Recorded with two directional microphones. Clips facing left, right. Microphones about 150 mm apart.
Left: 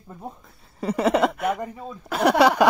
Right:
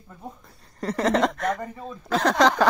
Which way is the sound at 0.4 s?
Centre (ahead or behind).